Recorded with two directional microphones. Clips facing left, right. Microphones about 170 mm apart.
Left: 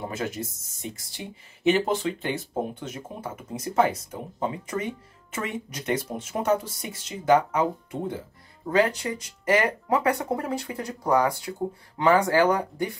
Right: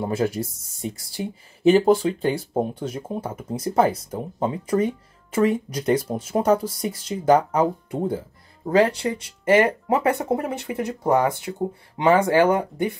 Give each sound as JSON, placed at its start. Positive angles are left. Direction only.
{"t": 0.1, "sound": "speech", "side_deg": -30}
{"t": 8.6, "sound": "speech", "side_deg": -30}